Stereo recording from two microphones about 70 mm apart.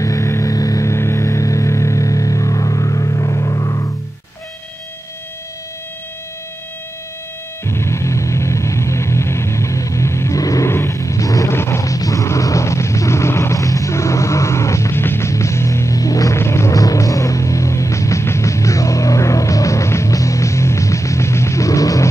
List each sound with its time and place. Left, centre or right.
0.0 s music: left
7.6 s music: left
10.4 s vehicle: left
10.7 s vehicle: left
11.5 s music: left
16.3 s music: left
16.7 s music: left